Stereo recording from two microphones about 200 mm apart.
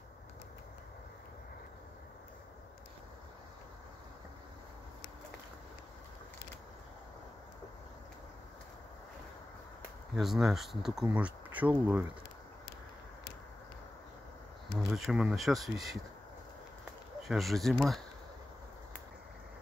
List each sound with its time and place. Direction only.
10.1 s speech: centre (ahead or behind)
14.9 s speech: centre (ahead or behind)
17.2 s speech: centre (ahead or behind)